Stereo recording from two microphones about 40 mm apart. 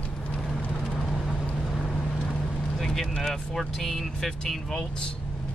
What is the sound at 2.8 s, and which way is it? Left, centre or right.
Speech, centre.